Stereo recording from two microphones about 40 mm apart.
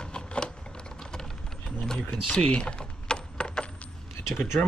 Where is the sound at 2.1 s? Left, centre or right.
Left.